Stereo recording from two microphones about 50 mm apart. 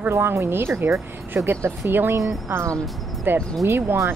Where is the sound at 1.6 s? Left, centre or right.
Right.